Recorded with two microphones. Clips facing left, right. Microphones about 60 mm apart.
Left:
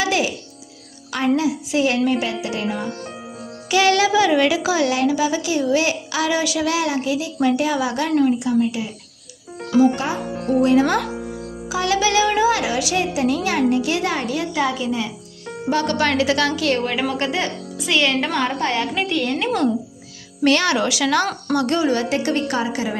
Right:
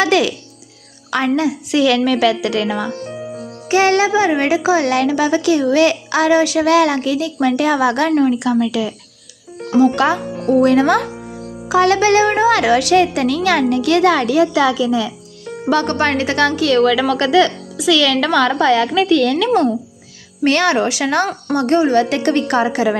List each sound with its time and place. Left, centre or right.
0.0 s music: right
1.1 s a woman's voice: right
3.6 s speech: right
9.9 s a woman's voice: right
10.6 s a woman's voice: right
15.7 s a woman's voice: right
20.4 s speech: right
22.1 s a woman's voice: right